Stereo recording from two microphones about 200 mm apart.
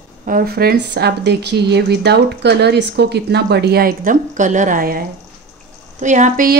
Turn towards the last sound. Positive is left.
turn(degrees=-40)  # may be behind; listen again after turning